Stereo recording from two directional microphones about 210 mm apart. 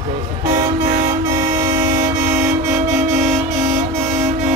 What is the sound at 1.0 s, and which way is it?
Toot, 10° right (ahead or behind).